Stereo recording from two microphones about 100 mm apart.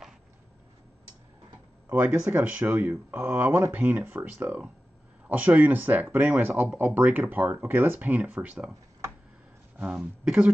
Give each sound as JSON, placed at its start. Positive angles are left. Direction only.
{"t": 1.9, "sound": "speech", "side_deg": -15}
{"t": 9.8, "sound": "speech", "side_deg": -10}